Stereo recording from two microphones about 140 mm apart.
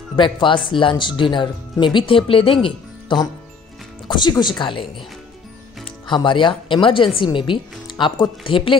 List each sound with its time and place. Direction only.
0.1 s speech: 35° left (ahead or behind)
5.9 s music: 35° left (ahead or behind)
6.7 s speech: 35° left (ahead or behind)